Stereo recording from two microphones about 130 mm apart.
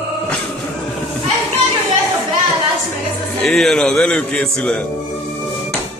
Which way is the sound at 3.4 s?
Centre (ahead or behind).